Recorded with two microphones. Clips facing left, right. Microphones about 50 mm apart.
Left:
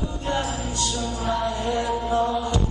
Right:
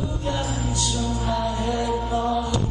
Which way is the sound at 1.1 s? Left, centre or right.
Left.